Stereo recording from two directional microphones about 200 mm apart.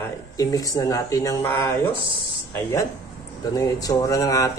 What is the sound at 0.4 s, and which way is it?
Speech, 15° left (ahead or behind).